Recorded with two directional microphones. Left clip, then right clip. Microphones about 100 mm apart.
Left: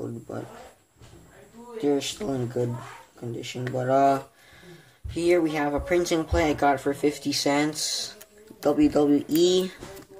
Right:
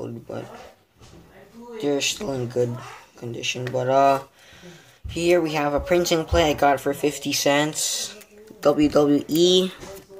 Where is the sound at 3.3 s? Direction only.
35° right (ahead or behind).